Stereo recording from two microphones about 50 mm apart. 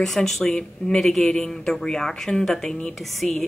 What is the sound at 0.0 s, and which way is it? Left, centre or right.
Speech, centre.